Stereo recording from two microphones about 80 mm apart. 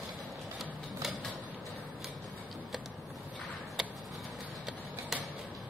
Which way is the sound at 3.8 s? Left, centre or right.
Centre.